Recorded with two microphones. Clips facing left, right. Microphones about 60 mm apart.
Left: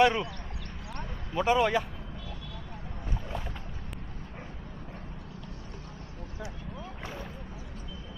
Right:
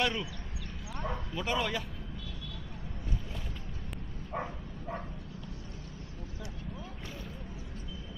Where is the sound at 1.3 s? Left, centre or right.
Left.